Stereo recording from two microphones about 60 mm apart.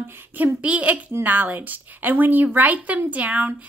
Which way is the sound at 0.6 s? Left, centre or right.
Right.